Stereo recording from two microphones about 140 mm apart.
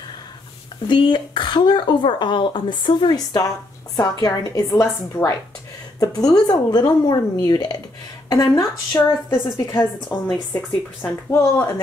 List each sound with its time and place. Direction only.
0.8 s speech: 35° left (ahead or behind)
6.3 s speech: 30° left (ahead or behind)
9.3 s speech: 20° left (ahead or behind)